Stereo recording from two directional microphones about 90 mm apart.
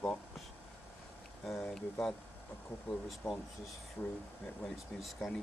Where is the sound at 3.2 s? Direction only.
15° left (ahead or behind).